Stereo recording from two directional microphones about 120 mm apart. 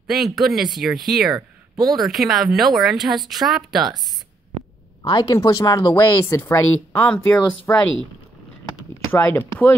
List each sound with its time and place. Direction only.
0.0 s speech: centre (ahead or behind)
5.0 s speech: 35° left (ahead or behind)
9.1 s speech: 20° left (ahead or behind)